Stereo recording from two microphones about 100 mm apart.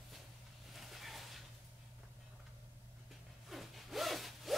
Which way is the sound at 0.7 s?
Centre (ahead or behind).